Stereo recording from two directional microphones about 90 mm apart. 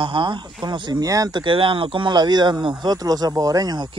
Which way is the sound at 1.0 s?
40° right (ahead or behind).